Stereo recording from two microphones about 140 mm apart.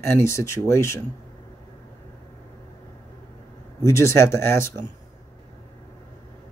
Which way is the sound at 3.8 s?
20° left (ahead or behind).